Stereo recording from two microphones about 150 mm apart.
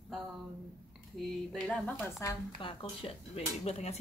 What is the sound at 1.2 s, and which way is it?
Speech, centre (ahead or behind).